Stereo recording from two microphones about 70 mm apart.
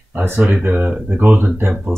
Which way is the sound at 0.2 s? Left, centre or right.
Right.